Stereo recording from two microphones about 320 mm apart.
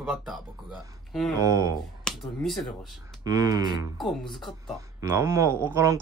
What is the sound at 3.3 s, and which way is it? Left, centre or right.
Speech, centre.